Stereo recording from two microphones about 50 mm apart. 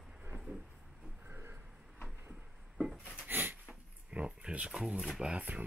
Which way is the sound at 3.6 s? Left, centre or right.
Right.